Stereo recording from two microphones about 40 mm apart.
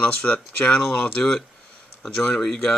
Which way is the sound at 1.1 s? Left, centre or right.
Left.